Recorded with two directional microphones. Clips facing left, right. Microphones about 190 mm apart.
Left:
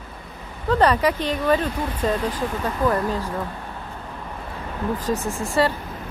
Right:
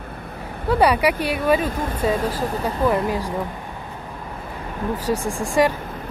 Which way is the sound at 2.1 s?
40° right (ahead or behind).